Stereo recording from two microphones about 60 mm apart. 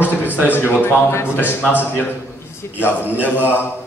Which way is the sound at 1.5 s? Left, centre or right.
Left.